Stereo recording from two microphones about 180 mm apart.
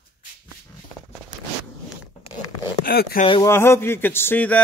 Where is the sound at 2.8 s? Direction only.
55° left (ahead or behind).